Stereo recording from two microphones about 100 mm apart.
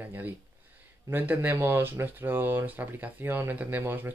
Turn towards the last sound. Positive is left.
turn(degrees=-20)  # may be behind; listen again after turning